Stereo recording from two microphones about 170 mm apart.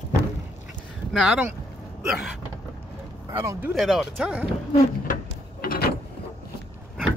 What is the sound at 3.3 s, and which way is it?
Speech, 15° right (ahead or behind).